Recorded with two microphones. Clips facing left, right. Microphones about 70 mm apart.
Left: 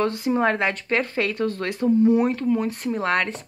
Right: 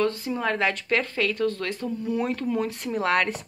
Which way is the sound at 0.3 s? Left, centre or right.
Left.